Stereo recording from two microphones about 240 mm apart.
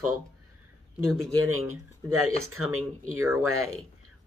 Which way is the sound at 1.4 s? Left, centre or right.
Right.